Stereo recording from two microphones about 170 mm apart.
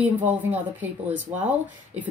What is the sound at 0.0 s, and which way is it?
Speech, 10° right (ahead or behind).